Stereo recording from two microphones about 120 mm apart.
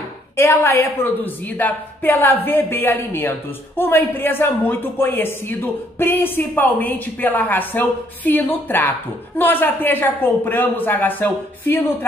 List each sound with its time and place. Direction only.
0.4 s a woman's voice: 20° left (ahead or behind)